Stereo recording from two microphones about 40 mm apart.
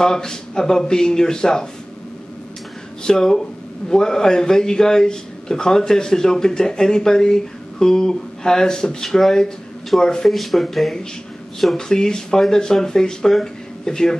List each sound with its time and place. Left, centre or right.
0.0 s a man's voice: centre
3.0 s a man's voice: centre
10.3 s speech: centre
11.7 s a man's voice: centre